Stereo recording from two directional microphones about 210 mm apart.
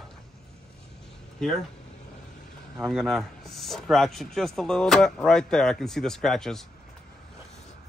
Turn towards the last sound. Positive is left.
turn(degrees=0)  # may be behind; listen again after turning